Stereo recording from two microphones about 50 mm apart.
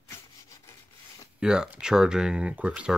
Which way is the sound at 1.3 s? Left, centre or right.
Centre.